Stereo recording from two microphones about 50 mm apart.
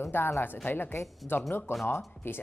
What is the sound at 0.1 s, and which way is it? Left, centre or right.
Speech, left.